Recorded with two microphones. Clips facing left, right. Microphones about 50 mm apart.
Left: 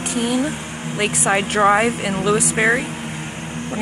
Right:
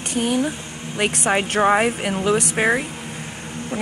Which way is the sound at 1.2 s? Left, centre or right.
Centre.